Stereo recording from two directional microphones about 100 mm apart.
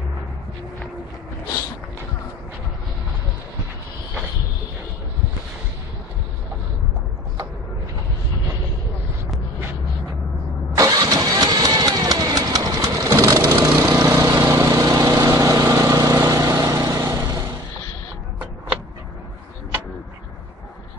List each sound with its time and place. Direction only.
10.8 s engine starting: 40° right (ahead or behind)
13.7 s vehicle: 30° right (ahead or behind)